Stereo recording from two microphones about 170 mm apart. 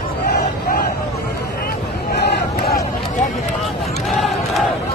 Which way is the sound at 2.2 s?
65° left (ahead or behind).